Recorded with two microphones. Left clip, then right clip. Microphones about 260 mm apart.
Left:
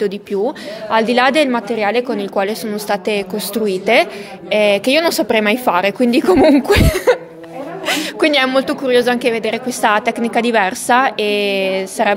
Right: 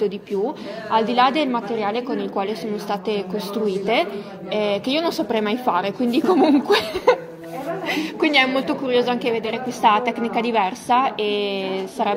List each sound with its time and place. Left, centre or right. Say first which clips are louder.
0.9 s a woman's voice: left 5 dB; left